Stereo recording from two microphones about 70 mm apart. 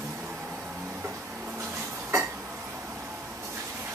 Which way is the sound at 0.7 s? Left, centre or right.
Centre.